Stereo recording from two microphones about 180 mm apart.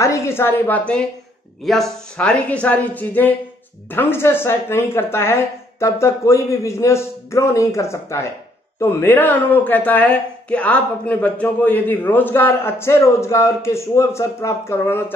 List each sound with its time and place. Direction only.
0.0 s speech: 15° left (ahead or behind)